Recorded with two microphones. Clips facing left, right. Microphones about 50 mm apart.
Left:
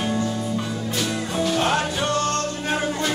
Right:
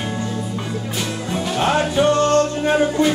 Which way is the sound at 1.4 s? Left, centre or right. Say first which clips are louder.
Right 3 dB; centre.